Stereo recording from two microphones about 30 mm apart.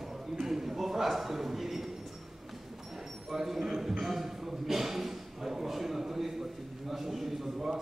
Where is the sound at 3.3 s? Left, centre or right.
Centre.